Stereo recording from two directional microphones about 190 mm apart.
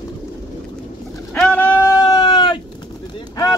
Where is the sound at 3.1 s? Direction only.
20° left (ahead or behind).